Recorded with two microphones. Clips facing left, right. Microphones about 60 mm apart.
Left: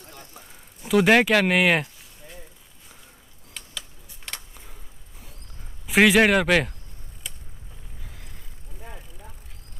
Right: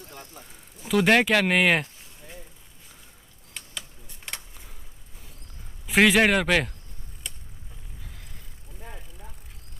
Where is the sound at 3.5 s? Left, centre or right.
Centre.